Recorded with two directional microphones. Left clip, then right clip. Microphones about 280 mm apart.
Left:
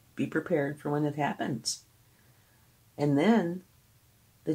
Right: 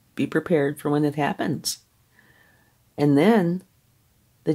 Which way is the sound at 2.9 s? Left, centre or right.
Right.